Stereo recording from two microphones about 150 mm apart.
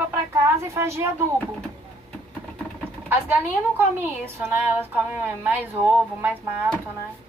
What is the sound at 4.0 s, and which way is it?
A woman's voice, 15° right (ahead or behind).